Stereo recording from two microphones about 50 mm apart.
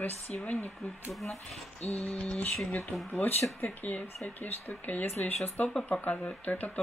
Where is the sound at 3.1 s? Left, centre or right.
Left.